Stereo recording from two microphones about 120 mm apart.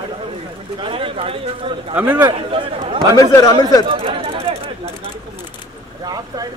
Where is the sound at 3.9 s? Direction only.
50° right (ahead or behind).